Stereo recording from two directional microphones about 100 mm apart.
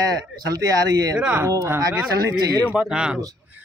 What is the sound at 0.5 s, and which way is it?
Speech, 35° right (ahead or behind).